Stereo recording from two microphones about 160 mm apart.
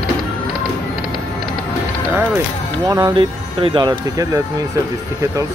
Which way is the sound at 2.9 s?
20° right (ahead or behind).